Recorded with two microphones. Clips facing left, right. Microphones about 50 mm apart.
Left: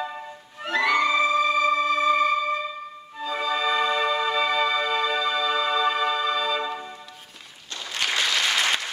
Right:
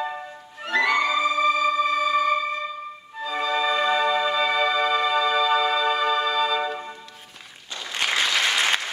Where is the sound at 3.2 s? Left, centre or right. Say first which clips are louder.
Right 1 dB; centre.